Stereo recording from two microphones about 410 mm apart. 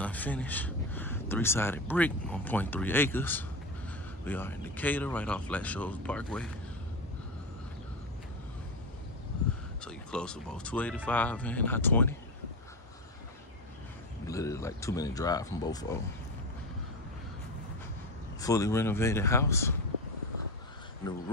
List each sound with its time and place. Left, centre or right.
0.0 s speech: centre
9.8 s speech: centre
14.2 s speech: centre
18.4 s speech: centre